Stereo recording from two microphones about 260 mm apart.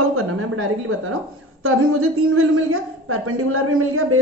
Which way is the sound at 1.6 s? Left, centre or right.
Right.